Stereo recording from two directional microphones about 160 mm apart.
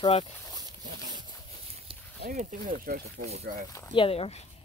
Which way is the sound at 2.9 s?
65° right (ahead or behind).